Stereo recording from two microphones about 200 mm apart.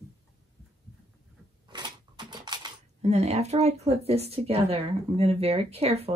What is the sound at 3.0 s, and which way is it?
Speech, 35° right (ahead or behind).